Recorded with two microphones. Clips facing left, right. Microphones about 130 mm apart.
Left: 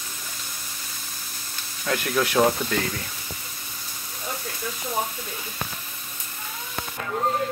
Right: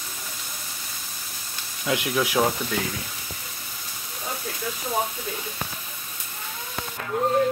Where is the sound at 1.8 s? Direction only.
10° right (ahead or behind).